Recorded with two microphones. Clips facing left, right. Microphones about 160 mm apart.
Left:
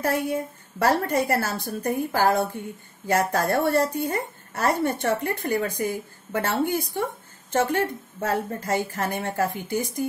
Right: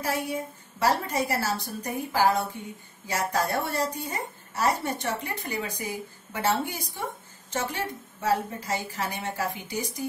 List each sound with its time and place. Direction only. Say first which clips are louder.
0.0 s a woman's voice: left 5 dB; 55° left (ahead or behind)